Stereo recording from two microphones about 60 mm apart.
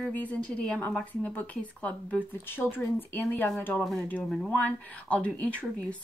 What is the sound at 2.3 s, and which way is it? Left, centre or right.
Speech, left.